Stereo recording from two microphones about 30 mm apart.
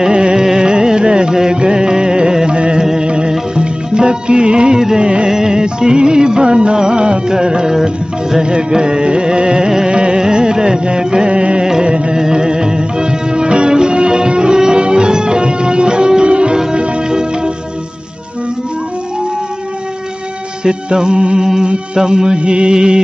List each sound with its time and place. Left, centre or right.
0.1 s carnatic music: right
0.6 s music: right
2.8 s music: centre
3.1 s music: right
17.1 s music: right
20.6 s music: right